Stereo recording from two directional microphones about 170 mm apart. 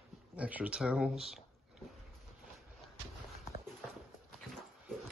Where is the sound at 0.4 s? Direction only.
10° right (ahead or behind).